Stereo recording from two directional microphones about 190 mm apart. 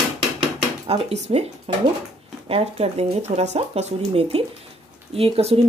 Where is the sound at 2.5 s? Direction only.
35° right (ahead or behind).